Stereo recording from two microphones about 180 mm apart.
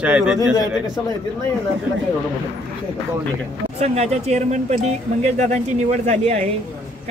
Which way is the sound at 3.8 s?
35° right (ahead or behind).